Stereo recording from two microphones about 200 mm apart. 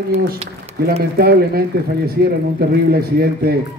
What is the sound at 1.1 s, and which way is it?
A man's voice, 50° right (ahead or behind).